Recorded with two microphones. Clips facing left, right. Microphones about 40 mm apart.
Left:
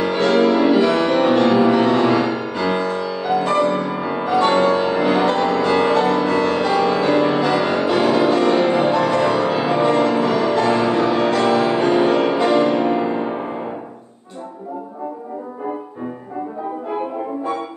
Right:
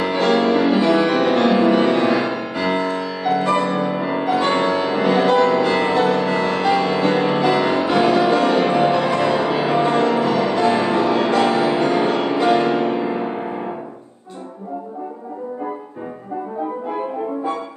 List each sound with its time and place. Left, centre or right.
0.1 s music: centre
1.3 s music: centre